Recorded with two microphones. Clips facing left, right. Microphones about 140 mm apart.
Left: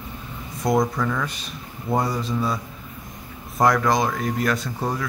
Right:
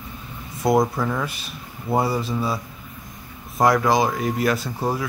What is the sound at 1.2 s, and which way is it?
Speech, 5° right (ahead or behind).